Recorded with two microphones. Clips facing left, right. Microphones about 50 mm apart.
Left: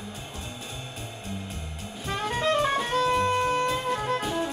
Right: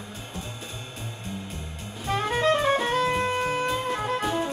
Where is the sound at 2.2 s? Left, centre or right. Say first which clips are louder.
Right 2 dB; centre.